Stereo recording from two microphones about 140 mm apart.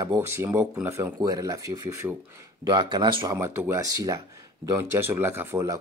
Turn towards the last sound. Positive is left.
turn(degrees=-20)  # may be behind; listen again after turning